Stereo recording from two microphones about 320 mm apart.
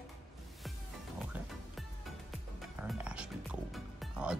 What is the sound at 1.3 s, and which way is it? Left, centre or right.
Music, centre.